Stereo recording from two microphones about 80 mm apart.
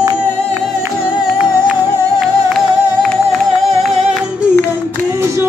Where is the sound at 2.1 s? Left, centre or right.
Centre.